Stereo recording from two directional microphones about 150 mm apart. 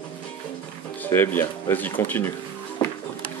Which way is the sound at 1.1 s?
15° left (ahead or behind).